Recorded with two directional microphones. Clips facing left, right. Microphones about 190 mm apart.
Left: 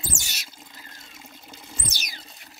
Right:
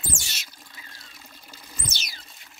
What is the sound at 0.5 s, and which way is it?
Water, 20° left (ahead or behind).